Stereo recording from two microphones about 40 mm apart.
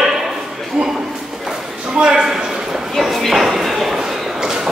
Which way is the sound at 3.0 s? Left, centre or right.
Centre.